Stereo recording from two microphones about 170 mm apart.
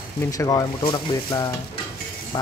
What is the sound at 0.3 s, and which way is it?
Speech, 20° left (ahead or behind).